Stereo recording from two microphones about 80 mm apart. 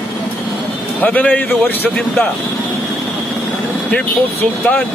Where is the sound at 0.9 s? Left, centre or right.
Left.